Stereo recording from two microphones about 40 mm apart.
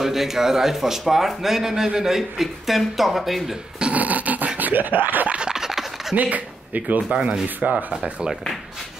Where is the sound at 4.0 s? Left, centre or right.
Right.